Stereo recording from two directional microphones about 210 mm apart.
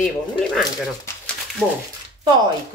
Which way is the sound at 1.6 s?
5° right (ahead or behind).